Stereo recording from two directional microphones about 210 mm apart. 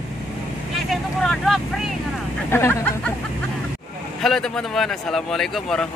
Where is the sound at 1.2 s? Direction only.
Centre (ahead or behind).